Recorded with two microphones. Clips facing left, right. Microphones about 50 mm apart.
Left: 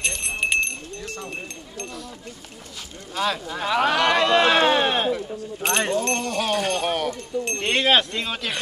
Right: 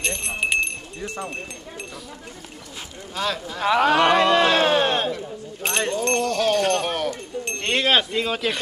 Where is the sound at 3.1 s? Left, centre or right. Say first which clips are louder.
Left 1 dB; centre.